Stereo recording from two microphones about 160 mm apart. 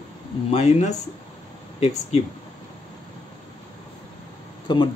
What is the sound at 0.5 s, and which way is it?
Speech, 40° left (ahead or behind).